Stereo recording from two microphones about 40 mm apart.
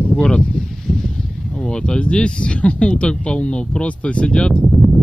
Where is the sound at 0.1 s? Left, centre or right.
Left.